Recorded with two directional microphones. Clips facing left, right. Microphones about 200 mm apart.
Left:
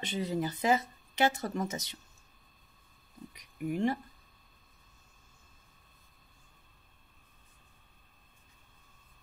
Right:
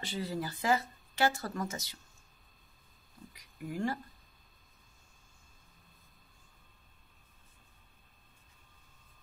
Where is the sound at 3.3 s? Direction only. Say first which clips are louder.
Left 7 dB; 20° left (ahead or behind).